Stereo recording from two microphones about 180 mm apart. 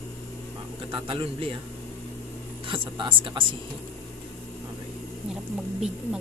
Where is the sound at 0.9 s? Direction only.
30° right (ahead or behind).